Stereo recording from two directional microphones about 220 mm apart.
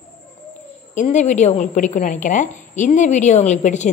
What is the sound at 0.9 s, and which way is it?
Speech, 35° left (ahead or behind).